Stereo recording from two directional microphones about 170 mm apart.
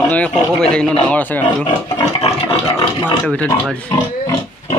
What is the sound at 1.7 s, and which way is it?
Pig, 35° left (ahead or behind).